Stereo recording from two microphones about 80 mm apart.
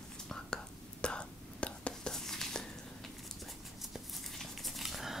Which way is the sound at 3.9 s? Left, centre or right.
Centre.